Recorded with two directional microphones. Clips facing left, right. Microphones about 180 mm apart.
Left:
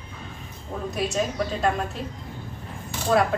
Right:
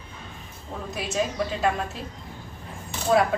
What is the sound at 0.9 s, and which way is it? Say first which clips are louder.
Speech: left 1 dB; 5° right (ahead or behind).